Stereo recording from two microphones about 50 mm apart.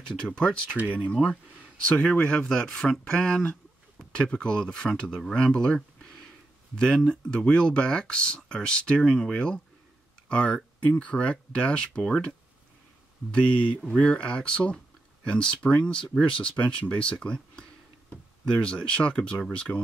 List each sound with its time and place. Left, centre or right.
0.2 s speech: centre
0.7 s speech: right
1.1 s speech: centre
1.9 s speech: centre
13.8 s speech: left